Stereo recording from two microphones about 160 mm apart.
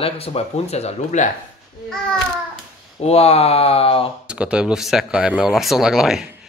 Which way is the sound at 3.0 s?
40° left (ahead or behind).